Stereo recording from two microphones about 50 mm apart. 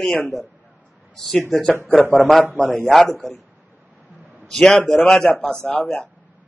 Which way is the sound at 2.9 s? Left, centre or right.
Centre.